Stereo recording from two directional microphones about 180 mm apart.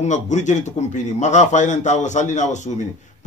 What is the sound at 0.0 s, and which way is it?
A man's voice, 40° left (ahead or behind).